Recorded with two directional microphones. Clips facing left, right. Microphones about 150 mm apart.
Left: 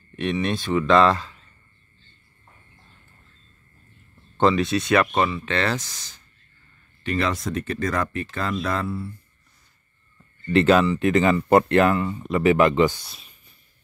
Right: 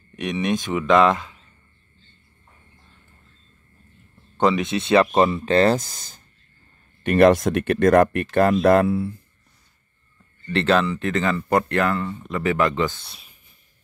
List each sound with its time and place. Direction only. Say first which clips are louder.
0.1 s speech: right 1 dB; 15° right (ahead or behind)
4.4 s speech: even; 15° right (ahead or behind)
5.3 s speech: right 7 dB; 35° right (ahead or behind); by 9.1 s 70° right (ahead or behind)
10.5 s speech: left 3 dB; 10° left (ahead or behind)